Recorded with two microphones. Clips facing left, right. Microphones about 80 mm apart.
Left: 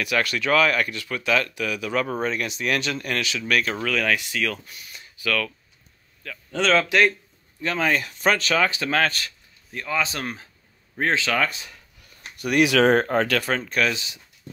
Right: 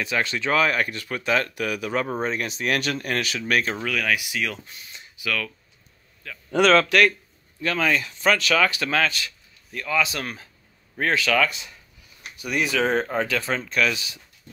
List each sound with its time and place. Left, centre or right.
0.0 s speech: right
3.7 s speech: centre
4.6 s speech: right
6.9 s speech: left
7.8 s speech: left
8.9 s speech: left